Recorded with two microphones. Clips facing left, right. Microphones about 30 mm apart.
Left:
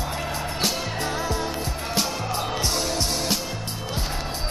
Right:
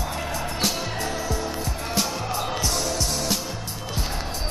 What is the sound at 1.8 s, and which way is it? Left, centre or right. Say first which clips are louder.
Music: even; centre.